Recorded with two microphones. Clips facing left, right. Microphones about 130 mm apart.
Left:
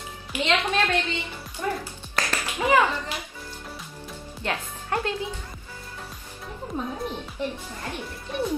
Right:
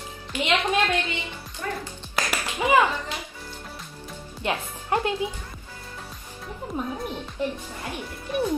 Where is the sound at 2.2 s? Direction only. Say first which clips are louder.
Right 1 dB; 10° right (ahead or behind).